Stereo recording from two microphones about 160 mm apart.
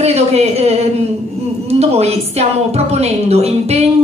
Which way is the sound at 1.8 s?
40° right (ahead or behind).